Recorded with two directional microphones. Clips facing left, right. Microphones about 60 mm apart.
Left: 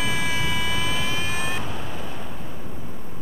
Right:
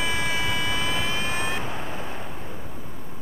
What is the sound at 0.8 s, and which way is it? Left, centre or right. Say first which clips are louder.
Vehicle: even; right.